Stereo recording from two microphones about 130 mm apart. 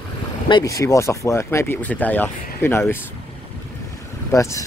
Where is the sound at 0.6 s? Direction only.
25° left (ahead or behind).